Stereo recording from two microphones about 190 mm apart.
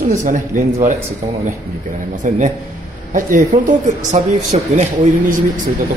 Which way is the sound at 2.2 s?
40° right (ahead or behind).